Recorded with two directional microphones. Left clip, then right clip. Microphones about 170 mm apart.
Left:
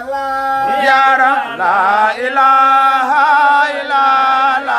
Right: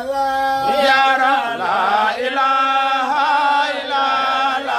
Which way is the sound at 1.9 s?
20° left (ahead or behind).